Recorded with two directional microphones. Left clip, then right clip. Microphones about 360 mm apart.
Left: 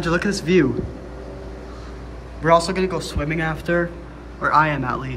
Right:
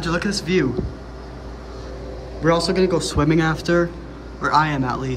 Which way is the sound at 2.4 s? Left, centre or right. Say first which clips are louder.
Left 1 dB; centre.